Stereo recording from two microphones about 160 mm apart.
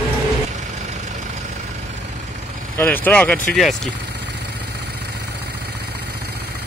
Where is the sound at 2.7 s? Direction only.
10° left (ahead or behind).